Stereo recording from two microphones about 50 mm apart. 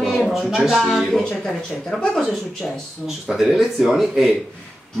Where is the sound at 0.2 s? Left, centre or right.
Centre.